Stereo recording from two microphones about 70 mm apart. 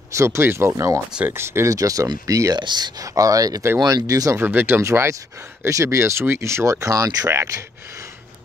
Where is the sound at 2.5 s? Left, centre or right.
Right.